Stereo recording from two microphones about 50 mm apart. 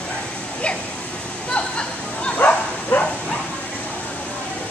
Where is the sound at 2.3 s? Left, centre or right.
Left.